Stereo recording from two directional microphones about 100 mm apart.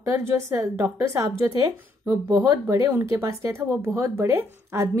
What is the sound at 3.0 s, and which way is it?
Speech, 25° right (ahead or behind).